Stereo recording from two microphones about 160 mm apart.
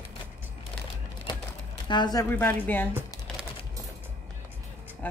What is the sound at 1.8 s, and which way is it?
Speech, 25° left (ahead or behind).